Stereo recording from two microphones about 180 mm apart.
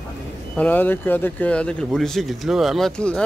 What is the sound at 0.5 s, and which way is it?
Speech, 10° left (ahead or behind).